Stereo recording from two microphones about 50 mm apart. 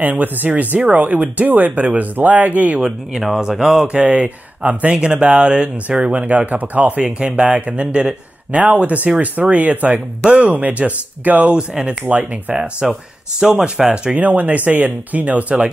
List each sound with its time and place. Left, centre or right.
0.0 s speech: right
2.8 s speech: centre
4.0 s speech: right
7.0 s speech: right
11.5 s speech: centre
12.1 s speech: right
13.8 s speech: centre
14.1 s speech: right